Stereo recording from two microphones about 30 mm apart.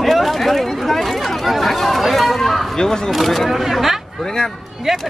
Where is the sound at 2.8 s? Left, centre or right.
Centre.